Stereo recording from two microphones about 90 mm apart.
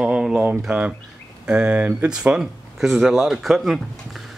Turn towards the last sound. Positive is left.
turn(degrees=0)  # may be behind; listen again after turning